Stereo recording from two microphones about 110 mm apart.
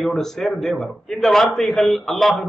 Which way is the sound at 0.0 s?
5° left (ahead or behind).